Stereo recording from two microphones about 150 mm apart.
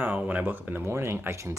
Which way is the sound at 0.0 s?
10° right (ahead or behind).